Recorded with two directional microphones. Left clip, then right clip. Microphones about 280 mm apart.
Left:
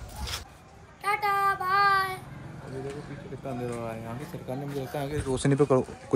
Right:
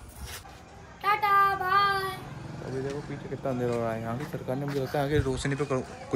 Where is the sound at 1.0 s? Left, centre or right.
Centre.